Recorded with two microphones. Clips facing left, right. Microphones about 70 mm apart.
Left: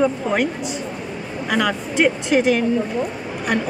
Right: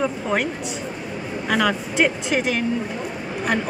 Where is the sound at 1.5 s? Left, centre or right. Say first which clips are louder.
Even; centre.